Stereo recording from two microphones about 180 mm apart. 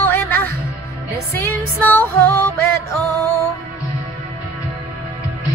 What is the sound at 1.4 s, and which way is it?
Music, 10° left (ahead or behind).